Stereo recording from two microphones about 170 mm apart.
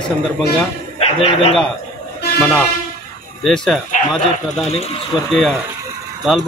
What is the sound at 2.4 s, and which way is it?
A man's voice, 5° left (ahead or behind).